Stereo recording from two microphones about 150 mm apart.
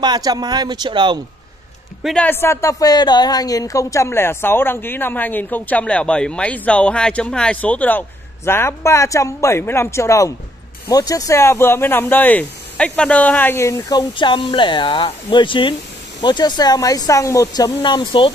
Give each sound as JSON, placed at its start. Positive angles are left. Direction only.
{"t": 0.0, "sound": "speech", "side_deg": -25}
{"t": 2.0, "sound": "speech", "side_deg": 10}